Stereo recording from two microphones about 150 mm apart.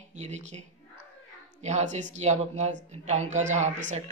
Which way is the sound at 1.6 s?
50° right (ahead or behind).